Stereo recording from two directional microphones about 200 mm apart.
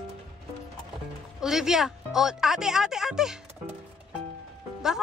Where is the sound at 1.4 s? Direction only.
Centre (ahead or behind).